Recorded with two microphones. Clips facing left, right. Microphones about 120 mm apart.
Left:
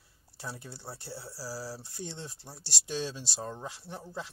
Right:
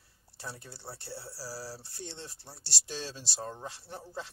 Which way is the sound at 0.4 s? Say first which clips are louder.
Left 2 dB; 10° left (ahead or behind).